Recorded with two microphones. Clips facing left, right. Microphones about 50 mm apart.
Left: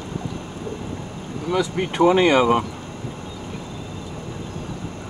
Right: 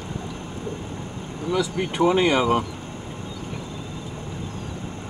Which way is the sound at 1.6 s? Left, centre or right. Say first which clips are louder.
Left 4 dB; left.